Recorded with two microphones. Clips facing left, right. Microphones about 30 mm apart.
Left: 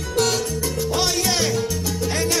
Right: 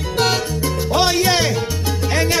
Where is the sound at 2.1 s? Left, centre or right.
Right.